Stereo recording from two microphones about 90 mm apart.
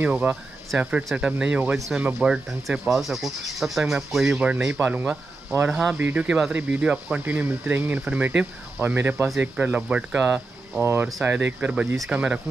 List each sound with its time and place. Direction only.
0.0 s speech: 20° right (ahead or behind)
4.6 s speech: 25° right (ahead or behind)
10.8 s speech: 25° right (ahead or behind)